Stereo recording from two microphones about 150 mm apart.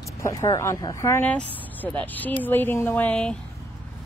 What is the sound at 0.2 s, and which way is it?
A woman's voice, 20° left (ahead or behind).